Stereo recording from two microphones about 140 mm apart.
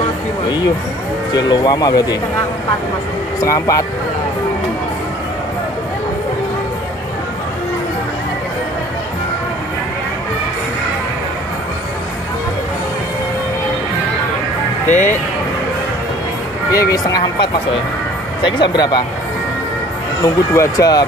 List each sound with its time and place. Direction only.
1.3 s speech: 30° left (ahead or behind)
3.3 s speech: 25° left (ahead or behind)
14.9 s speech: 60° left (ahead or behind)
16.7 s speech: 25° left (ahead or behind)
20.2 s speech: 25° left (ahead or behind)